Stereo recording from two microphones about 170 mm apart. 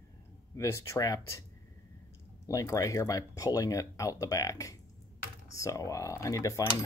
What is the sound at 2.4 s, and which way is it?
Speech, 20° left (ahead or behind).